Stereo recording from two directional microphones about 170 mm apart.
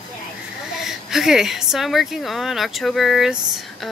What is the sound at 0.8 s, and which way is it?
A woman's voice, centre (ahead or behind).